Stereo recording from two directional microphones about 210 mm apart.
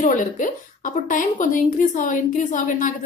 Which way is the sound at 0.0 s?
40° left (ahead or behind).